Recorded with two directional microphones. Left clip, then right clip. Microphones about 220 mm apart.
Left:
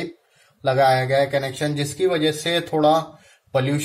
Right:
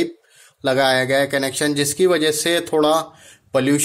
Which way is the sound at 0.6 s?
40° right (ahead or behind).